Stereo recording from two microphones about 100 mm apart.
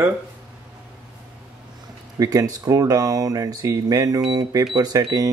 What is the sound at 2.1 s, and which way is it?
Speech, 35° right (ahead or behind).